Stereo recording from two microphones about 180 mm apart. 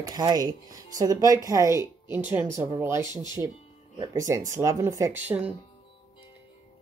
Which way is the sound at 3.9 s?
20° right (ahead or behind).